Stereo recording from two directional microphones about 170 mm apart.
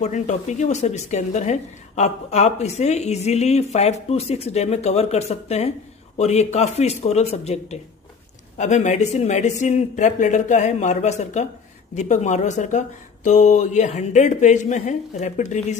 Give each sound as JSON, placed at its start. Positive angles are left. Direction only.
{"t": 0.0, "sound": "speech", "side_deg": 45}